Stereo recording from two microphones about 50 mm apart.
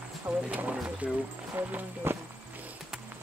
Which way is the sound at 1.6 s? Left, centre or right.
Right.